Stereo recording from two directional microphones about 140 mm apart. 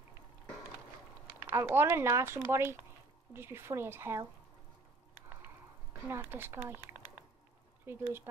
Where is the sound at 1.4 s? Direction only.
20° right (ahead or behind).